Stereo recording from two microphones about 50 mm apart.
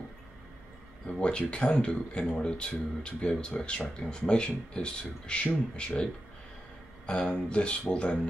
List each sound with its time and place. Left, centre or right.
1.0 s speech: left
7.1 s speech: centre